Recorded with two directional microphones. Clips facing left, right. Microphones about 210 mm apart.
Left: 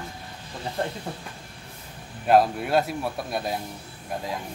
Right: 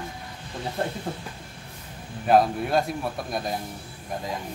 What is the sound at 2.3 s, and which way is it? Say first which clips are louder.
A man's voice: even; centre (ahead or behind).